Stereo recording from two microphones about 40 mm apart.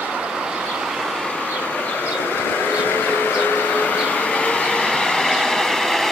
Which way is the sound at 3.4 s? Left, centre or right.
Left.